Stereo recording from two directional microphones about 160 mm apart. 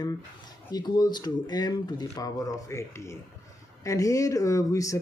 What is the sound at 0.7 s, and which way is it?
Speech, 25° left (ahead or behind).